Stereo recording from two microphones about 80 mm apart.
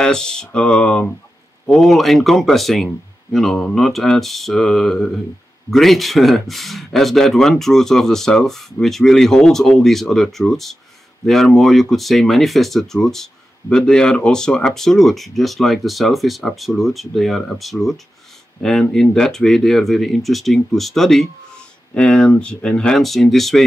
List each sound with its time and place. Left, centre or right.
0.0 s speech: centre
1.7 s speech: centre